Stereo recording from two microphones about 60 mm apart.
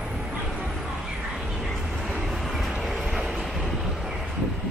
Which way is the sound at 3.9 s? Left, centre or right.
Centre.